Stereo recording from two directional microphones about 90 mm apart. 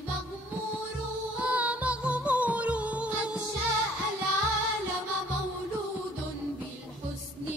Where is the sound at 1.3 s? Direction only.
15° right (ahead or behind).